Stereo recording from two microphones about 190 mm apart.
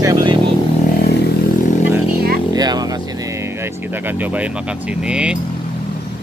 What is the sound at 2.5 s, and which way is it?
Vehicle, 20° right (ahead or behind).